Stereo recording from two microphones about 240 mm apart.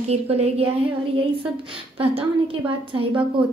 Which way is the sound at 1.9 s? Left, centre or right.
Right.